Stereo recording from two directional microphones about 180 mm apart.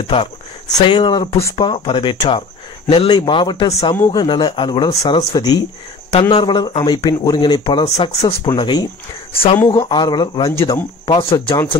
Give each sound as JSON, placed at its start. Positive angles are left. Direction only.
{"t": 0.1, "sound": "speech", "side_deg": 25}
{"t": 11.1, "sound": "speech", "side_deg": 30}